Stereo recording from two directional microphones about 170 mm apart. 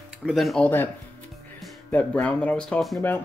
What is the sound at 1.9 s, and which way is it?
Speech, 10° left (ahead or behind).